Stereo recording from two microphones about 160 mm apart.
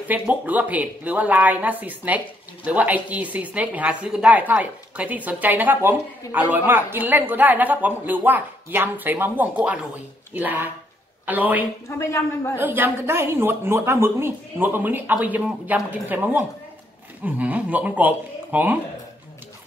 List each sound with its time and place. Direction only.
0.1 s speech: 10° right (ahead or behind)
12.0 s a woman's voice: 15° left (ahead or behind)
12.5 s speech: 10° right (ahead or behind)